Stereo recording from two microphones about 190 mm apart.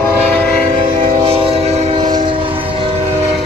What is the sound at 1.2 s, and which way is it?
Train, 30° right (ahead or behind).